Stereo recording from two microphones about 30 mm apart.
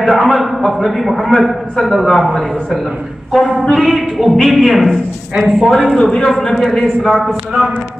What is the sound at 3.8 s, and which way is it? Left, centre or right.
A man's voice, centre.